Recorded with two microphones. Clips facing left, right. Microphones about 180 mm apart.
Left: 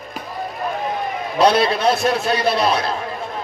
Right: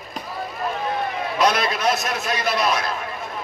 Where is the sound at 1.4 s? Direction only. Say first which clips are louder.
Left 6 dB; 30° left (ahead or behind).